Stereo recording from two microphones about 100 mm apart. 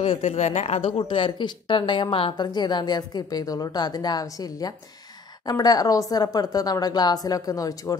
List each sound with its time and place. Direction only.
0.0 s speech: 85° left; by 8.0 s 35° left (ahead or behind)